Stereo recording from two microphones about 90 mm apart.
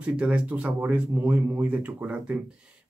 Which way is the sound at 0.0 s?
15° right (ahead or behind).